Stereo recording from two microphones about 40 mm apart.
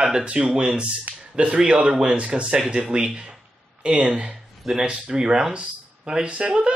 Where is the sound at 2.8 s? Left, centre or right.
Right.